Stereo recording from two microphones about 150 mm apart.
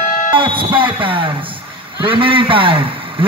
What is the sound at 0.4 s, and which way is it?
A man's voice, 35° right (ahead or behind).